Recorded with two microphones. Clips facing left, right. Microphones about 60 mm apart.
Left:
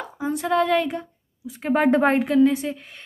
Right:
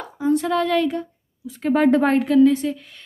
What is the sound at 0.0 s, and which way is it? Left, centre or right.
A woman's voice, centre.